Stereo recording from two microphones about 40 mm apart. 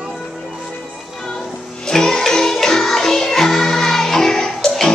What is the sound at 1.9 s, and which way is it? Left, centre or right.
Music, centre.